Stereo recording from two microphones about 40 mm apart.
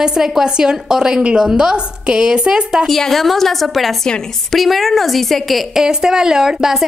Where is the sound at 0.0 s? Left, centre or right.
Centre.